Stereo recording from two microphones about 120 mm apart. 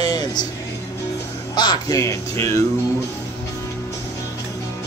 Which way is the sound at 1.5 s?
35° left (ahead or behind).